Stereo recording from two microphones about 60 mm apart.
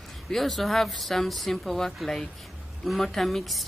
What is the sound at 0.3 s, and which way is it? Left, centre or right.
Speech, centre.